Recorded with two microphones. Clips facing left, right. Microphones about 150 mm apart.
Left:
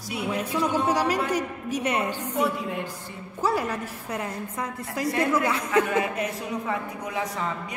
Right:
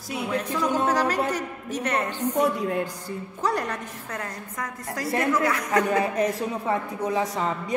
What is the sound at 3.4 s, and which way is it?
A woman's voice, 5° left (ahead or behind).